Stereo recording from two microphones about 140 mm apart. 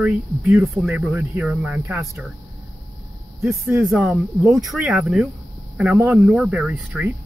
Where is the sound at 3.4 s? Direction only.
20° right (ahead or behind).